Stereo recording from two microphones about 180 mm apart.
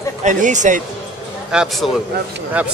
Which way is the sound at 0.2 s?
45° right (ahead or behind).